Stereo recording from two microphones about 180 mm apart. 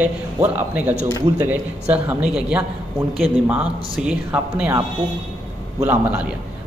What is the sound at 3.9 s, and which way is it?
Speech, 5° right (ahead or behind).